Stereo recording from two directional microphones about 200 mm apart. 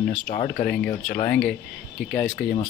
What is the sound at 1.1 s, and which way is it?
Speech, 50° left (ahead or behind).